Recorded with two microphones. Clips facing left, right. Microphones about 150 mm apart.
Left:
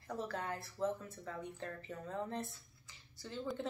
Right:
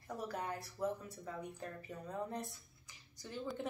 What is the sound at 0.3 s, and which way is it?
Speech, 15° right (ahead or behind).